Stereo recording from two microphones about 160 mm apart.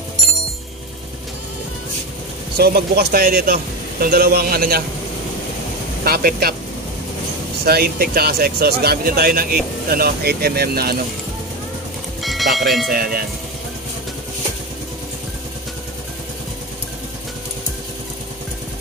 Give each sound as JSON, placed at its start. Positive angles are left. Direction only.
{"t": 2.5, "sound": "speech", "side_deg": -75}
{"t": 6.0, "sound": "speech", "side_deg": -70}
{"t": 7.6, "sound": "speech", "side_deg": -75}
{"t": 12.2, "sound": "speech", "side_deg": 0}
{"t": 12.9, "sound": "speech", "side_deg": -65}